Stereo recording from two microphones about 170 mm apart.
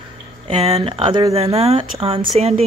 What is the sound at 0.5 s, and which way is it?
Speech, 35° right (ahead or behind).